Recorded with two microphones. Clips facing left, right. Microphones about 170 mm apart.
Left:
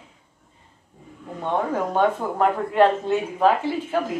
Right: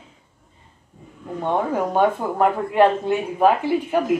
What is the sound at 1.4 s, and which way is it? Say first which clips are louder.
A man's voice: right 2 dB; 10° right (ahead or behind).